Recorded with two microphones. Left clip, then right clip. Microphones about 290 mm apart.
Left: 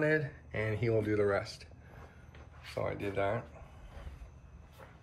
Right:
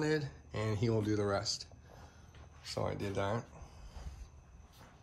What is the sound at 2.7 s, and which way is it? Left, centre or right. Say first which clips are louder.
Speech: left 2 dB; centre.